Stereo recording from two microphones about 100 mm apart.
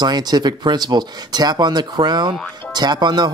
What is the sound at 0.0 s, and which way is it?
Speech, 45° right (ahead or behind).